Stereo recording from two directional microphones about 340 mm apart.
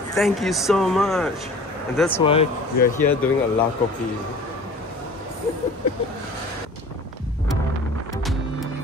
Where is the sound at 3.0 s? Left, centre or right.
Centre.